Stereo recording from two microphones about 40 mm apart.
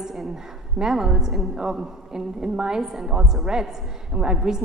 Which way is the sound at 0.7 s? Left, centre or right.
Centre.